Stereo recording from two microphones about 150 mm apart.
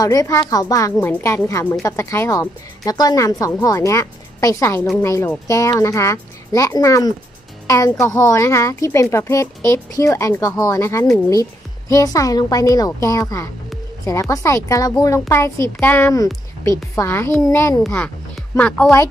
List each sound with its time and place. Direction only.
0.0 s a woman's voice: 25° left (ahead or behind)
17.8 s speech: 5° left (ahead or behind)